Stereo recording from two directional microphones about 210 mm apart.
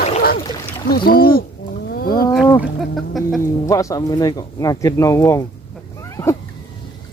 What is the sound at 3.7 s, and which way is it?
Speech, 15° left (ahead or behind).